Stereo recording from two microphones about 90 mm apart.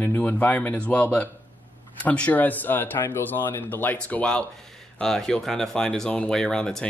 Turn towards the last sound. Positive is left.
turn(degrees=10)  # may be behind; listen again after turning